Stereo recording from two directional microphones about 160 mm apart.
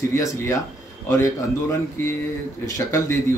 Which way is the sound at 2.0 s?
15° left (ahead or behind).